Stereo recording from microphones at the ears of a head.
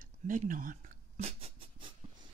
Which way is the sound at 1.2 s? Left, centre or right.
Right.